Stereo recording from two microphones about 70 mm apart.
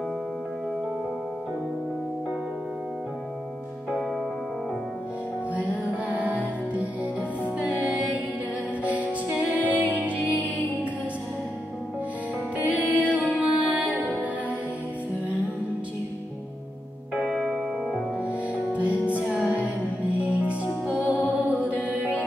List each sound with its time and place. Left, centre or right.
5.5 s music: right
12.5 s music: right
17.2 s music: centre
18.7 s music: right
21.3 s mantra: right